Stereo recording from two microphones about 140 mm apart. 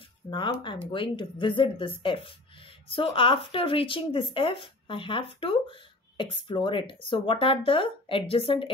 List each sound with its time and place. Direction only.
0.3 s a woman's voice: 35° left (ahead or behind)